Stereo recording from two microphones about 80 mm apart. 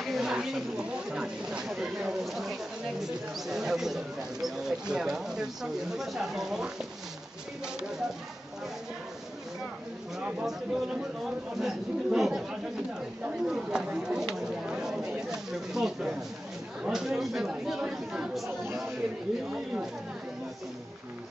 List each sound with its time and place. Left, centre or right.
0.0 s speech: centre
10.4 s speech: centre